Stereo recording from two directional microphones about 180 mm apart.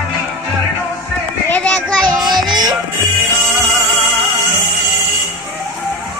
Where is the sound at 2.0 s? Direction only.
25° right (ahead or behind).